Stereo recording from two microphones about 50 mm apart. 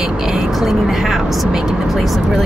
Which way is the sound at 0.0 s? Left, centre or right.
Centre.